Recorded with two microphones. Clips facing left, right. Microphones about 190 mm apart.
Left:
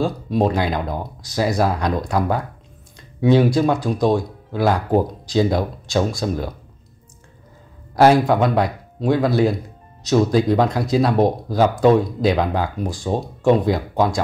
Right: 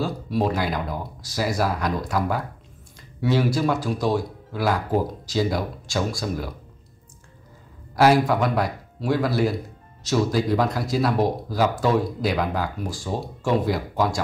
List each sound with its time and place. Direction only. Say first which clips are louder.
0.0 s speech: left 5 dB; 20° left (ahead or behind)
7.9 s a man's voice: left 4 dB; 20° left (ahead or behind)